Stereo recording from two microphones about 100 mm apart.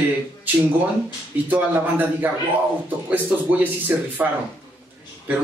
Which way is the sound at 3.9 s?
20° right (ahead or behind).